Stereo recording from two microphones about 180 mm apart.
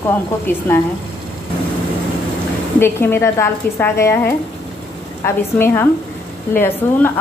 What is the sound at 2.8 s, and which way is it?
A woman's voice, 15° left (ahead or behind).